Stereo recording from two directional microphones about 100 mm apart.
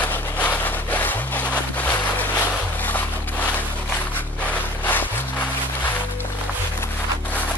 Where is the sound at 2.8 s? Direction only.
20° left (ahead or behind).